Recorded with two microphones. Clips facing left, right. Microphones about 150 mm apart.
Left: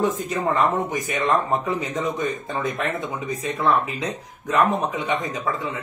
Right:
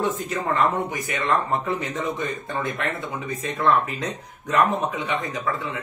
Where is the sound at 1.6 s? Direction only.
15° left (ahead or behind).